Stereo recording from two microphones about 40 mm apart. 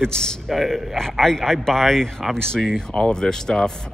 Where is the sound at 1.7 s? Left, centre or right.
Centre.